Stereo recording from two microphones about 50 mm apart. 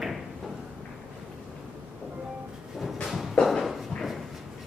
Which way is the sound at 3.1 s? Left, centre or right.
Centre.